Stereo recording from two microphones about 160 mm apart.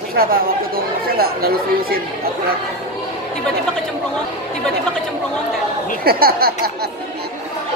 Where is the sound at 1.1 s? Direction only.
70° right (ahead or behind).